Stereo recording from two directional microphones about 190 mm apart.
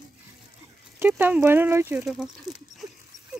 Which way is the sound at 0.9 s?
10° right (ahead or behind).